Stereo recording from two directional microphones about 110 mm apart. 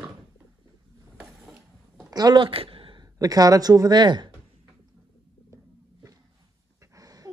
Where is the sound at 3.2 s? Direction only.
35° right (ahead or behind).